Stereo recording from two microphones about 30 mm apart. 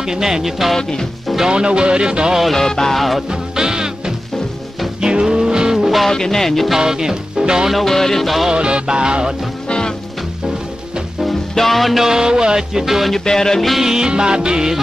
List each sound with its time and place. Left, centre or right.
0.0 s music: centre
0.4 s music: centre
1.5 s speech: right
2.5 s music: centre
3.0 s music: centre
3.3 s music: right
6.0 s music: centre
6.8 s music: centre
7.7 s music: centre
8.5 s speech: right
11.5 s music: centre
12.0 s music: centre
13.1 s music: centre
13.8 s music: right